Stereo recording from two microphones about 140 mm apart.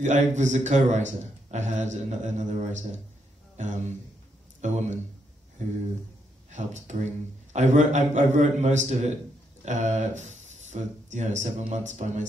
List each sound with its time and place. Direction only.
0.0 s a man's voice: 60° right (ahead or behind)
6.5 s a man's voice: 60° right (ahead or behind)